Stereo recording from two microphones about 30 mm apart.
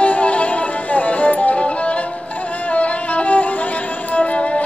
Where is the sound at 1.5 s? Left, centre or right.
Left.